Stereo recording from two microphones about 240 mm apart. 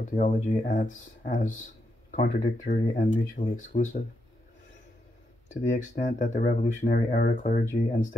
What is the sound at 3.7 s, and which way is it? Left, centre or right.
Speech, left.